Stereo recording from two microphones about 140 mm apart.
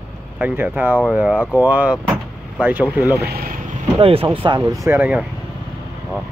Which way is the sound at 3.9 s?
40° right (ahead or behind).